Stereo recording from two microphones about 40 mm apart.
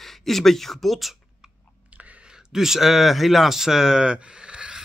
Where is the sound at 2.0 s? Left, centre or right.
Right.